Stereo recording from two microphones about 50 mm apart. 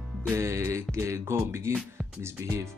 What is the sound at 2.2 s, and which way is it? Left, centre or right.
Speech, right.